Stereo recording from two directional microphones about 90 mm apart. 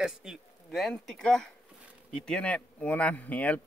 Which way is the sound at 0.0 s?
5° right (ahead or behind).